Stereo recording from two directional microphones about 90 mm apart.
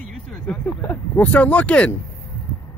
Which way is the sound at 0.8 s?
20° left (ahead or behind).